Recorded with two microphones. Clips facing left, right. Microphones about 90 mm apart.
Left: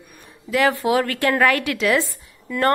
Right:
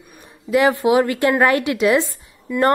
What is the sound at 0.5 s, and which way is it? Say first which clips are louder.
A woman's voice: right 3 dB; 20° right (ahead or behind).